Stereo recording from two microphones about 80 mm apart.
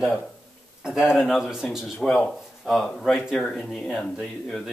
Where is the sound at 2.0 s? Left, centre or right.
Centre.